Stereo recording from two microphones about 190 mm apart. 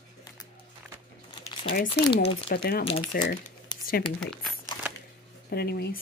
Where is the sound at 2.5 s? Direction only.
55° left (ahead or behind).